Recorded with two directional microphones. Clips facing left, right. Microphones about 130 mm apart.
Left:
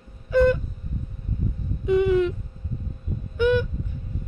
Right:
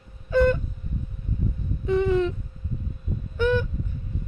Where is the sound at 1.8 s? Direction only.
10° left (ahead or behind).